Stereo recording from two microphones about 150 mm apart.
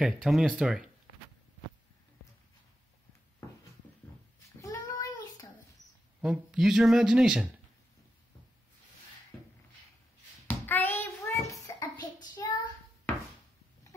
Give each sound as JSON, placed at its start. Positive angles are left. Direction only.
{"t": 0.0, "sound": "speech", "side_deg": 0}
{"t": 4.6, "sound": "child singing", "side_deg": 25}
{"t": 6.2, "sound": "speech", "side_deg": -5}
{"t": 10.4, "sound": "hands", "side_deg": 15}
{"t": 11.6, "sound": "child singing", "side_deg": 25}